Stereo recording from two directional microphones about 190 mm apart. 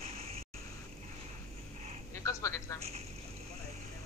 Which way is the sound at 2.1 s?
15° left (ahead or behind).